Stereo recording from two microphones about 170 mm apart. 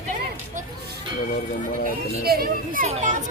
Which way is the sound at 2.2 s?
65° right (ahead or behind).